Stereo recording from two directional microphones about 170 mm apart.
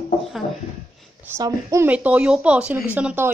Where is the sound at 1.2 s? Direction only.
15° right (ahead or behind).